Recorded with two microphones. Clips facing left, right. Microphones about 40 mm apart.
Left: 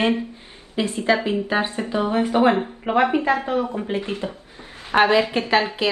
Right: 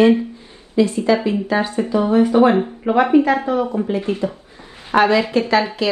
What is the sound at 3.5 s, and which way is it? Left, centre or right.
A woman's voice, left.